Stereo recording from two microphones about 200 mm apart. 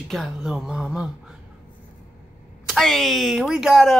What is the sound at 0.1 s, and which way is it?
Speech, centre (ahead or behind).